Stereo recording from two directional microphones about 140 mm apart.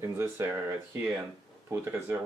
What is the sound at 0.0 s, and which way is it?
Speech, 15° right (ahead or behind).